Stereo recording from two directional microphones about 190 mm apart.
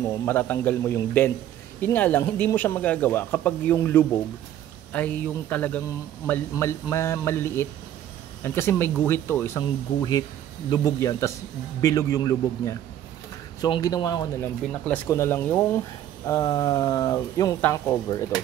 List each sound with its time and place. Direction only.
0.2 s a man's voice: 10° left (ahead or behind)
10.7 s a man's voice: 20° left (ahead or behind)